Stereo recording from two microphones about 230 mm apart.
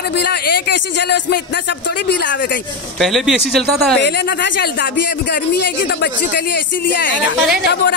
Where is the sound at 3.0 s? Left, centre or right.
Centre.